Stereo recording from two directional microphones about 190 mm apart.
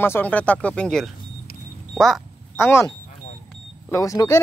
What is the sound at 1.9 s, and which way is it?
Quack, centre (ahead or behind).